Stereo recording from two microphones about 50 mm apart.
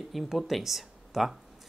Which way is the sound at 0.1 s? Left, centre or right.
Centre.